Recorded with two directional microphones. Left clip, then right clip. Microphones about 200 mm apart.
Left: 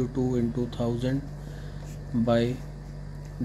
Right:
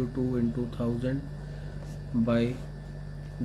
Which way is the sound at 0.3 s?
15° left (ahead or behind).